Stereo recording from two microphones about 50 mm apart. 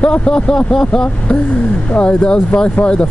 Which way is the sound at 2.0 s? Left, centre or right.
Left.